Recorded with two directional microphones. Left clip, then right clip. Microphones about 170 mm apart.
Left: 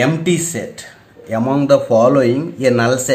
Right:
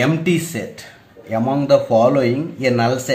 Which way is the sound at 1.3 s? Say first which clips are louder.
Left 2 dB; 25° left (ahead or behind).